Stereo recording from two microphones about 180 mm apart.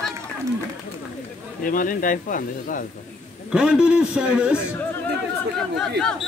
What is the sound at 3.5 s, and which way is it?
A man's voice, 5° right (ahead or behind).